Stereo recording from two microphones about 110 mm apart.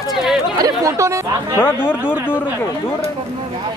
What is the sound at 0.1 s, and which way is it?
Chatter, 5° right (ahead or behind).